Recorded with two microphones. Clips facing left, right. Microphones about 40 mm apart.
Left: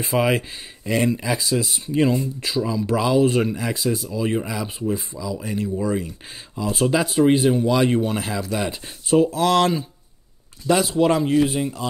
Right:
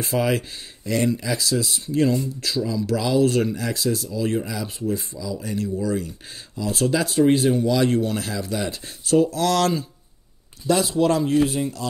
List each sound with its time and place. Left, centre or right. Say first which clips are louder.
0.0 s speech: left 2 dB; centre